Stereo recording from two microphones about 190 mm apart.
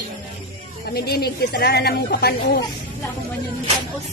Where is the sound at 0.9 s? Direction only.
55° left (ahead or behind).